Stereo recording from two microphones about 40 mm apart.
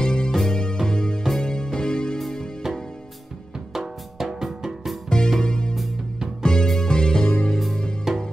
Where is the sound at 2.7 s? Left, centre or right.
Centre.